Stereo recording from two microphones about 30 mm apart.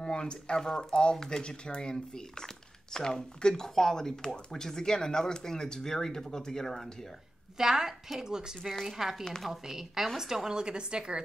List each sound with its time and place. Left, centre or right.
0.0 s speech: left; by 7.1 s centre
7.5 s a woman's voice: centre
8.8 s a woman's voice: centre
10.6 s a woman's voice: right